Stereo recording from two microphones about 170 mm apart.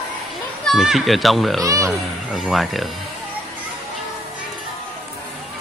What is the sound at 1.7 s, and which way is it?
Speech, 20° right (ahead or behind).